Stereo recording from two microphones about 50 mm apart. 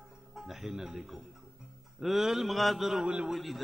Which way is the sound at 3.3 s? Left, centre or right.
Centre.